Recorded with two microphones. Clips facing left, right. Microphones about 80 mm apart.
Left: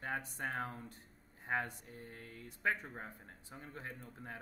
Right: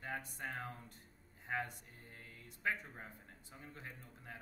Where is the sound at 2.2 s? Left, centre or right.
Left.